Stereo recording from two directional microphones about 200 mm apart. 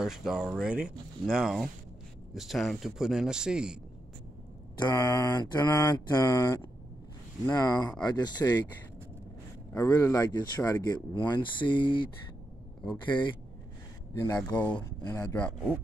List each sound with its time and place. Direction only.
0.0 s speech: centre (ahead or behind)
4.9 s mantra: 20° left (ahead or behind)
7.4 s speech: 20° left (ahead or behind)
9.8 s speech: 15° left (ahead or behind)
14.1 s mantra: 15° left (ahead or behind)